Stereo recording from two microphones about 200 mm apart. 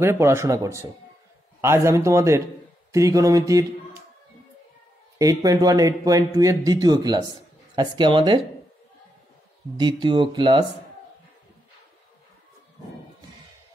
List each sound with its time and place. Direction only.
0.0 s speech: 15° right (ahead or behind)
5.2 s speech: 15° right (ahead or behind)
9.8 s speech: 25° right (ahead or behind)